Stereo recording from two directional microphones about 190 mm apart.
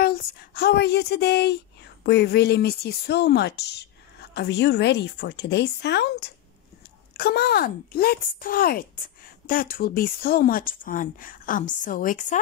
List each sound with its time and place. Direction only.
0.0 s a woman's voice: 50° left (ahead or behind)